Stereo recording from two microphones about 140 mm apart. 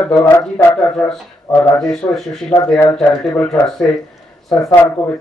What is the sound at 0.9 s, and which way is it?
Speech, 5° left (ahead or behind).